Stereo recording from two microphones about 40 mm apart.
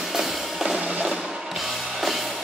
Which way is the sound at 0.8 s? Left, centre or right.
Right.